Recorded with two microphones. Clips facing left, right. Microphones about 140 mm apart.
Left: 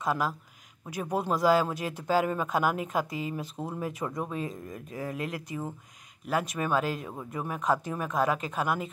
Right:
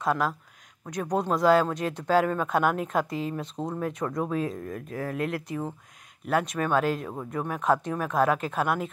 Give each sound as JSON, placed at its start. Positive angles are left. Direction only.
{"t": 0.0, "sound": "speech", "side_deg": 0}
{"t": 4.6, "sound": "speech", "side_deg": -60}
{"t": 5.0, "sound": "speech", "side_deg": 0}